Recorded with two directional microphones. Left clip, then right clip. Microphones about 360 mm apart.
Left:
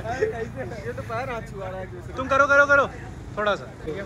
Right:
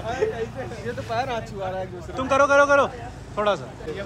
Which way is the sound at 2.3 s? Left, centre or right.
Centre.